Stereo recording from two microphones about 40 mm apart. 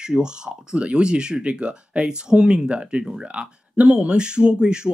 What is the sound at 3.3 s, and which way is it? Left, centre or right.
Speech, right.